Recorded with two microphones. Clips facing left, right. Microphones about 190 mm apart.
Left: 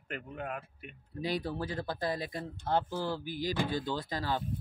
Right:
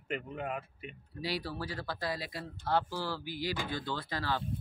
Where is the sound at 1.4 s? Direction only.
25° left (ahead or behind).